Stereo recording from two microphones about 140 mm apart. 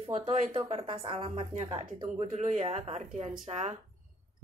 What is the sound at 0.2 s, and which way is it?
Speech, 35° right (ahead or behind).